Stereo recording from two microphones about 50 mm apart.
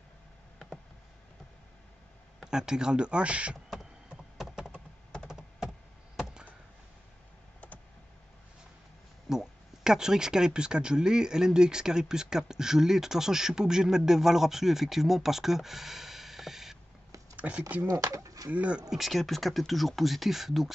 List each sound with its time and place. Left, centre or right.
2.4 s a man's voice: centre
4.4 s computer keyboard: centre
6.1 s a sound: centre
9.3 s speech: centre
17.4 s a man's voice: right
18.9 s speech: centre